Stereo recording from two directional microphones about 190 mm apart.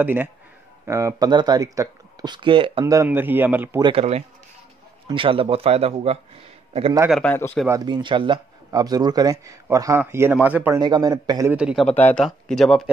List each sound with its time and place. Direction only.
0.0 s speech: 10° right (ahead or behind); by 2.8 s 25° right (ahead or behind)
2.8 s speech: 15° right (ahead or behind)
3.8 s speech: 30° right (ahead or behind)
7.1 s speech: 5° left (ahead or behind)
7.6 s speech: 20° right (ahead or behind)
10.8 s speech: 20° right (ahead or behind)
11.5 s speech: centre (ahead or behind)